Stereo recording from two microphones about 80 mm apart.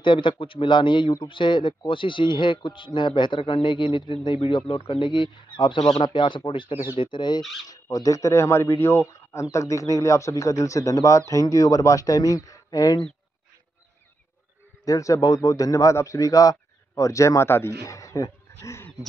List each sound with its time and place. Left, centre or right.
0.0 s speech: left
7.6 s speech: left
14.9 s a man's voice: left